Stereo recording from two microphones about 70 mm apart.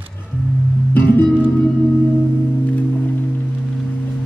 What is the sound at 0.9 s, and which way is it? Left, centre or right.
Music, left.